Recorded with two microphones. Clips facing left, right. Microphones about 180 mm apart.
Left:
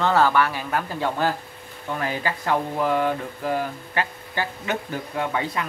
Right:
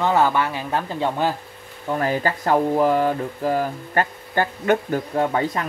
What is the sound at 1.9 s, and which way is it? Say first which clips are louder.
Speech: right 5 dB; 40° right (ahead or behind).